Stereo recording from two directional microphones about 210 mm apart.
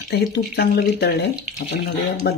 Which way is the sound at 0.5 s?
50° left (ahead or behind).